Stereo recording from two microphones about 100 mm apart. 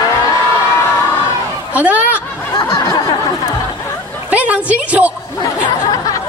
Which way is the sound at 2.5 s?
40° left (ahead or behind).